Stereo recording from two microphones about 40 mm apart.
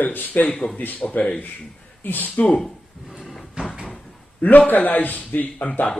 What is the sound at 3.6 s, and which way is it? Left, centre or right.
Cupboard open or close, right.